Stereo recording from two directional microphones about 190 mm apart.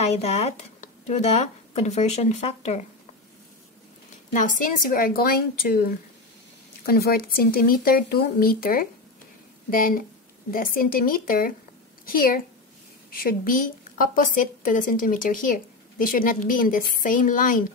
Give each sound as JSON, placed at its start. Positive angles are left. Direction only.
{"t": 0.0, "sound": "speech", "side_deg": 35}
{"t": 4.3, "sound": "a woman's voice", "side_deg": 45}